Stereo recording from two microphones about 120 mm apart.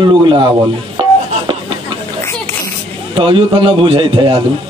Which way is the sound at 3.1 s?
45° right (ahead or behind).